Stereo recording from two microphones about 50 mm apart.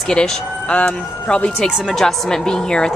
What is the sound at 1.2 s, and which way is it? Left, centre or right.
Speech, left.